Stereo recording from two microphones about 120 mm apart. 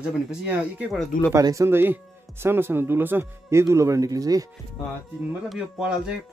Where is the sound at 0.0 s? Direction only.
10° right (ahead or behind).